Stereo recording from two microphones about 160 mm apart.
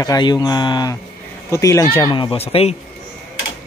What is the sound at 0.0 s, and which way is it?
Speech, 25° left (ahead or behind).